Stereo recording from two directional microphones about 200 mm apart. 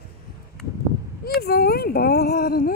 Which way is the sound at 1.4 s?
50° left (ahead or behind).